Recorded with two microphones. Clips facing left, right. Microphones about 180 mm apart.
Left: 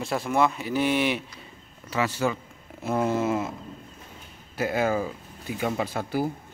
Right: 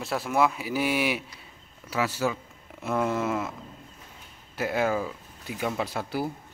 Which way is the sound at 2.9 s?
30° left (ahead or behind).